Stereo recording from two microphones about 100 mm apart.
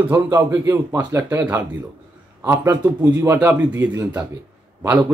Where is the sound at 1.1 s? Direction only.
20° right (ahead or behind).